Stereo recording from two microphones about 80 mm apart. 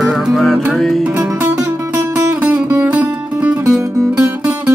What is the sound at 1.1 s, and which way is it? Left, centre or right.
Music, right.